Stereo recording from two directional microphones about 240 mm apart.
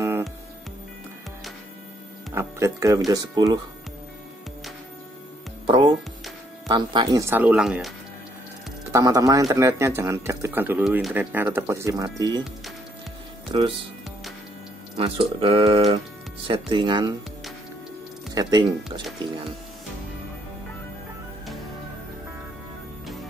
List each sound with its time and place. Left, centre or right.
0.0 s music: centre
2.3 s speech: centre
5.7 s music: centre
6.7 s speech: centre
8.9 s speech: centre
13.5 s speech: right
15.0 s speech: right
18.3 s speech: centre